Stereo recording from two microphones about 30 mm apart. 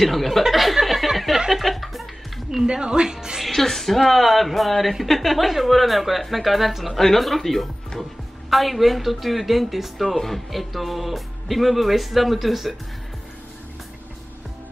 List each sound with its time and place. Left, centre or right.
0.0 s a woman's voice: centre
0.5 s a sound: centre
1.5 s music: centre
2.6 s speech: right
3.4 s a woman's voice: centre
6.9 s a woman's voice: centre